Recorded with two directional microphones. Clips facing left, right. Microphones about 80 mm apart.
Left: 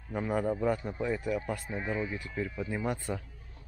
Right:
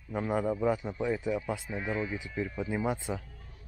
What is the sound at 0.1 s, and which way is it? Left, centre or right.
Speech, centre.